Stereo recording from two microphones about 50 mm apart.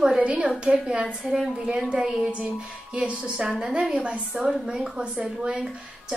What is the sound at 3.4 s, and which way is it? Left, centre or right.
Speech, centre.